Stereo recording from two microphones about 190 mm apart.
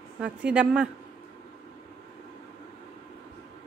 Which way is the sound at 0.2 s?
5° right (ahead or behind).